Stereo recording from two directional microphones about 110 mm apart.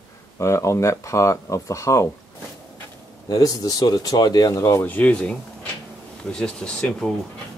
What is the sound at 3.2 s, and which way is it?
Speech, 35° left (ahead or behind).